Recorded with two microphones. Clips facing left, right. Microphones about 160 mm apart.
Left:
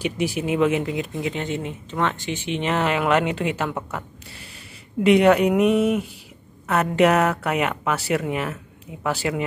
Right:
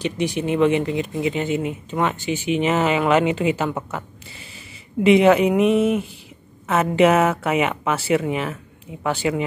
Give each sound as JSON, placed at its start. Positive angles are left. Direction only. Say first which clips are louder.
{"t": 0.0, "sound": "speech", "louder": "right 1 dB", "side_deg": 5}